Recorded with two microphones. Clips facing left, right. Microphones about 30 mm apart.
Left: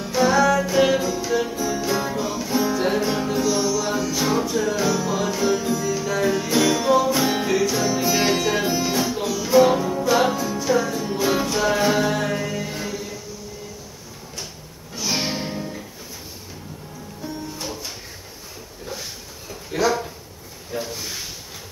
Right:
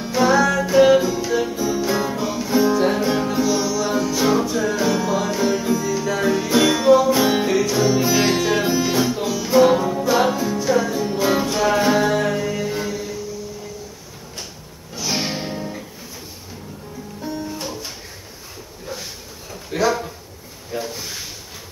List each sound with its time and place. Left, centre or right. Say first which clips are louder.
0.1 s music: right 1 dB; centre
15.0 s music: right 1 dB; centre
17.2 s music: right 4 dB; right
19.7 s a sound: right 1 dB; centre